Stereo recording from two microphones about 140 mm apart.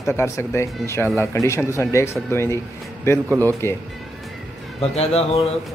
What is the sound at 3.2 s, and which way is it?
Speech, 20° right (ahead or behind).